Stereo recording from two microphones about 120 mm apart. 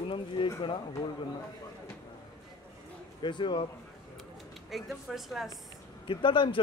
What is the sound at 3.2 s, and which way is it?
Speech, 40° left (ahead or behind).